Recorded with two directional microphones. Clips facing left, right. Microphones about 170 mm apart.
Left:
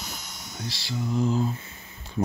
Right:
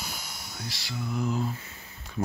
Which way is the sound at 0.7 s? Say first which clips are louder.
Left 5 dB; 30° left (ahead or behind).